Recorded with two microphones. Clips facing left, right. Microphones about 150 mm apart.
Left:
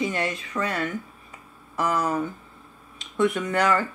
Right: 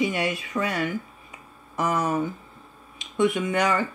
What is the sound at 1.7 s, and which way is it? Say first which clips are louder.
Speech: even; 25° right (ahead or behind).